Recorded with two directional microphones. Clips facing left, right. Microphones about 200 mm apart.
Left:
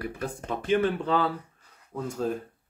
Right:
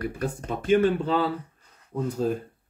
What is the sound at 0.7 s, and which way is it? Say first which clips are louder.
Speech: right 3 dB; 25° right (ahead or behind).